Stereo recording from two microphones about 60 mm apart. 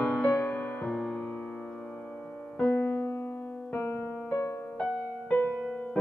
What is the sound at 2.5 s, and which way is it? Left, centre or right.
Music, left.